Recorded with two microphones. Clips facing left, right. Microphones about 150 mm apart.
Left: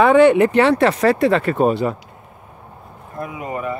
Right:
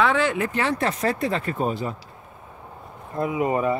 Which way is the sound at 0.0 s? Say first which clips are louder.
Left 10 dB; 55° left (ahead or behind).